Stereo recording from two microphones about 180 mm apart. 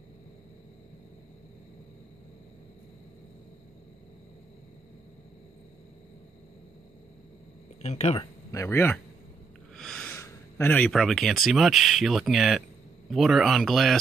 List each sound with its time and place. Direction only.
7.8 s speech: 35° left (ahead or behind)
8.5 s speech: 15° left (ahead or behind)
9.8 s snort: 5° left (ahead or behind)
10.1 s speech: 15° left (ahead or behind)